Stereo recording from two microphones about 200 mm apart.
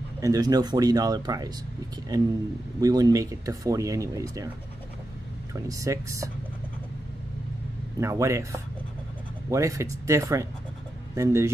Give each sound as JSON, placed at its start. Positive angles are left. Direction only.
{"t": 0.2, "sound": "speech", "side_deg": -20}
{"t": 5.5, "sound": "speech", "side_deg": -15}
{"t": 8.0, "sound": "speech", "side_deg": -15}